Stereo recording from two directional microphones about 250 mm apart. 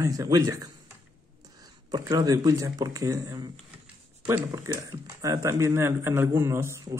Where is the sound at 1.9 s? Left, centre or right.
Centre.